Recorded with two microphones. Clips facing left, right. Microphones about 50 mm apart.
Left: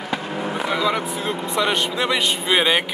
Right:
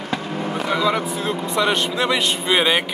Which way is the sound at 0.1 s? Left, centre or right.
Centre.